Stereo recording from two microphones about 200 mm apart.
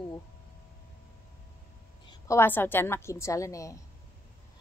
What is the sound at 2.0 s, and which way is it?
A woman's voice, 15° left (ahead or behind).